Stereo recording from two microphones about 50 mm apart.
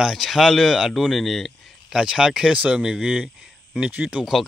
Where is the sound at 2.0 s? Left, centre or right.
Centre.